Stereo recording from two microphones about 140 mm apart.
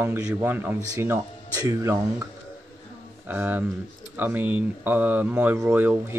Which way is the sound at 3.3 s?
15° right (ahead or behind).